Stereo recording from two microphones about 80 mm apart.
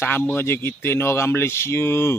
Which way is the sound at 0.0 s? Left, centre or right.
Left.